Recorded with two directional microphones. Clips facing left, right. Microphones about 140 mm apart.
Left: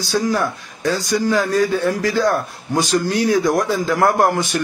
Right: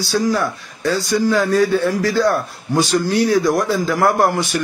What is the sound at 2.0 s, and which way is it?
A man's voice, 15° left (ahead or behind).